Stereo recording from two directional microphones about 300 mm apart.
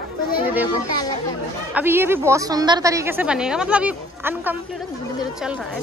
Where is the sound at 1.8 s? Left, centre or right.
Centre.